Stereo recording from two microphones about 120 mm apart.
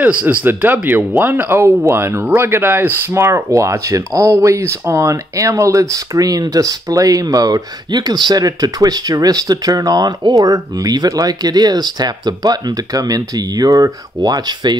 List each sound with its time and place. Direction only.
0.0 s speech: 10° right (ahead or behind); by 14.8 s 35° right (ahead or behind)